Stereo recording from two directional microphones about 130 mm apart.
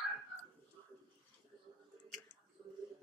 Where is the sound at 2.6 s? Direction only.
35° right (ahead or behind).